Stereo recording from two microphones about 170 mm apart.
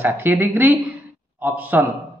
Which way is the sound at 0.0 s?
10° right (ahead or behind).